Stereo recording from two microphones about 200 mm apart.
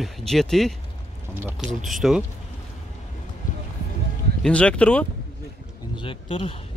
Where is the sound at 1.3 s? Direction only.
10° right (ahead or behind).